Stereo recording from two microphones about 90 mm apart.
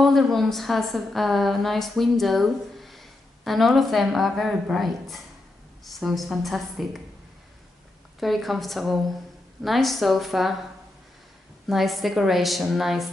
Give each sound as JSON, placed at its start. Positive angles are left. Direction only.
{"t": 0.0, "sound": "a woman's voice", "side_deg": 0}
{"t": 8.2, "sound": "a woman's voice", "side_deg": 0}
{"t": 11.6, "sound": "a woman's voice", "side_deg": 0}